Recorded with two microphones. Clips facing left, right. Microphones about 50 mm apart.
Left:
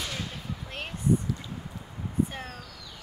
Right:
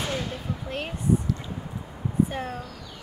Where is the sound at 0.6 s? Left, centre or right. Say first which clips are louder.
Right 2 dB; centre.